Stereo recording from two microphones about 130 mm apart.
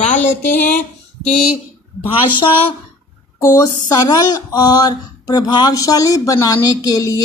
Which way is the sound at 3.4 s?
20° left (ahead or behind).